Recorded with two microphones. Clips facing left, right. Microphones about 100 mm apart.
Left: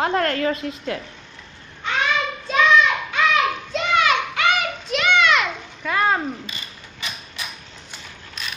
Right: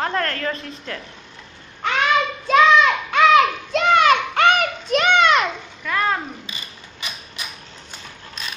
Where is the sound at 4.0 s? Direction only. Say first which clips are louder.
Right 4 dB; 45° right (ahead or behind).